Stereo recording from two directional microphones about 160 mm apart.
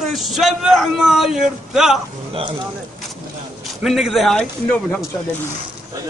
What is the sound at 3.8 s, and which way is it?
A man's voice, centre (ahead or behind).